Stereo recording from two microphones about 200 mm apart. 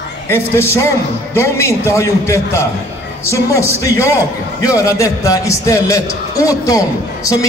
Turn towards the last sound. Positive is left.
turn(degrees=15)  # may be behind; listen again after turning